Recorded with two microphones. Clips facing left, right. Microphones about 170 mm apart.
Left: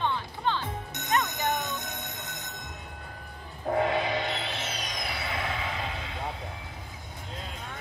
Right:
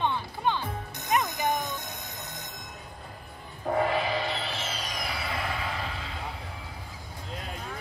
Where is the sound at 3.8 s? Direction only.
20° left (ahead or behind).